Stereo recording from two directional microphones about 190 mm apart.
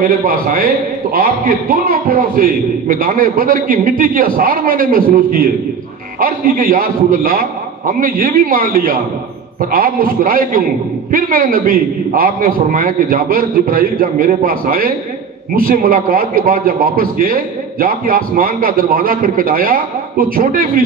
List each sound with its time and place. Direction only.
0.0 s a man's voice: 50° right (ahead or behind)